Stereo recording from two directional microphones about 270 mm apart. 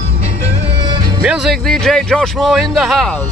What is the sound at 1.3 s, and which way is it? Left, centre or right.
A man's voice, centre.